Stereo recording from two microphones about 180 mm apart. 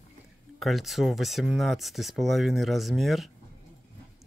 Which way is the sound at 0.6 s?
Centre (ahead or behind).